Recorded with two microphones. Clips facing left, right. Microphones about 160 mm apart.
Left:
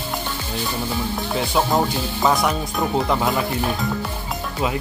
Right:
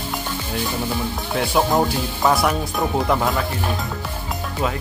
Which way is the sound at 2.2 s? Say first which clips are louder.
Right 1 dB; 5° right (ahead or behind).